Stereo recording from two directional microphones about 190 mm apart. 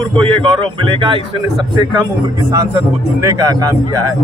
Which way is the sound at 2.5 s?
15° right (ahead or behind).